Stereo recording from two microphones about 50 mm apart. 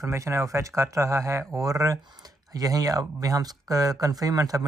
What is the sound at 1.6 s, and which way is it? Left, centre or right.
Speech, right.